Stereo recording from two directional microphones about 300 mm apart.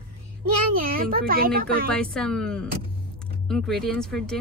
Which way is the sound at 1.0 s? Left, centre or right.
Right.